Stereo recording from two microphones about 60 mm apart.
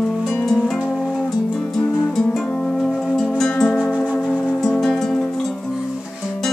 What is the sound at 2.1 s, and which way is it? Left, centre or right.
Music, centre.